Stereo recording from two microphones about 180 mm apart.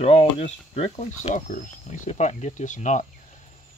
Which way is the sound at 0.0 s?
35° left (ahead or behind).